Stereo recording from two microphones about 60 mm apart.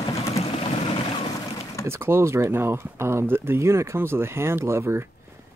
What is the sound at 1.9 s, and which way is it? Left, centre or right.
Speech, right.